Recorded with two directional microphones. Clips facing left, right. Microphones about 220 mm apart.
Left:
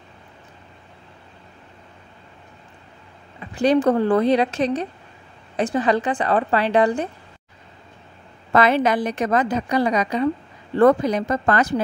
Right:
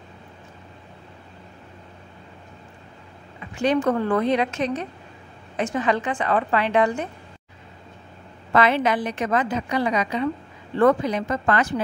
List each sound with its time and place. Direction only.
3.5 s a woman's voice: 35° left (ahead or behind)
8.5 s a woman's voice: 40° left (ahead or behind)